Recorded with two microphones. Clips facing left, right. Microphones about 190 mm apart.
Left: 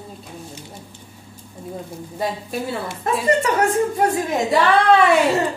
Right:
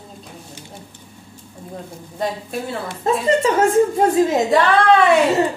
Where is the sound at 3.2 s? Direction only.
25° right (ahead or behind).